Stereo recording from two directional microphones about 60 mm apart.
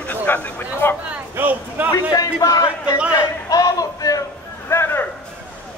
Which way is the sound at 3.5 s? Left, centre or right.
Left.